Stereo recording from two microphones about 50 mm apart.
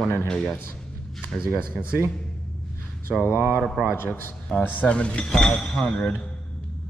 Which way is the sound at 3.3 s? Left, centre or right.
Right.